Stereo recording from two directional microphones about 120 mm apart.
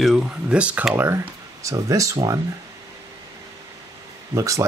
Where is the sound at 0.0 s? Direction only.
5° right (ahead or behind); by 2.1 s 25° right (ahead or behind).